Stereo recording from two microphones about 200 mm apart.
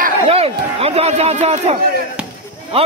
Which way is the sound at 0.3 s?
30° right (ahead or behind).